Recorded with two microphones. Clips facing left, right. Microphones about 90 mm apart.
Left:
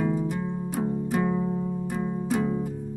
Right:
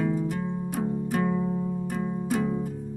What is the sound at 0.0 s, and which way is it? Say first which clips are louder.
Music: left 1 dB; 20° left (ahead or behind).